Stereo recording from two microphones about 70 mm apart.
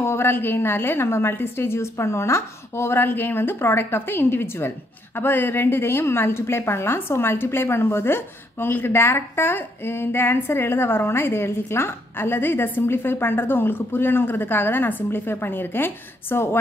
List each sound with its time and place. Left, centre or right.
0.0 s a woman's voice: left